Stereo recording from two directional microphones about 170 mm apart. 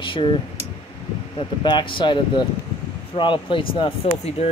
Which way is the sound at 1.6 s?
25° left (ahead or behind).